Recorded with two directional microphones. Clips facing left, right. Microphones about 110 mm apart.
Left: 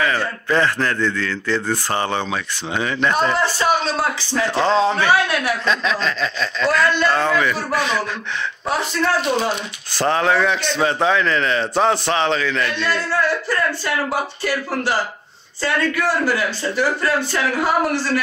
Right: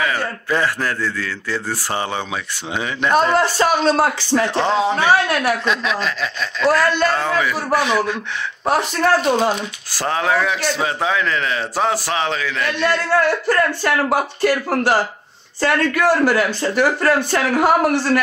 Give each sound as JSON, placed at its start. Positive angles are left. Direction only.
{"t": 0.0, "sound": "a man's voice", "side_deg": -10}
{"t": 3.3, "sound": "speech", "side_deg": -45}
{"t": 4.6, "sound": "a man's voice", "side_deg": -15}
{"t": 8.6, "sound": "speech", "side_deg": -50}
{"t": 9.9, "sound": "speech", "side_deg": -5}
{"t": 13.5, "sound": "a man's voice", "side_deg": -50}